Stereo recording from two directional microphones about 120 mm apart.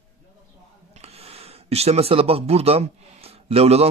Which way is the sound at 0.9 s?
60° right (ahead or behind).